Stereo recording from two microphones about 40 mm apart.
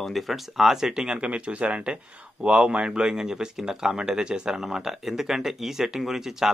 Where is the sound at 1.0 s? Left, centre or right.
Right.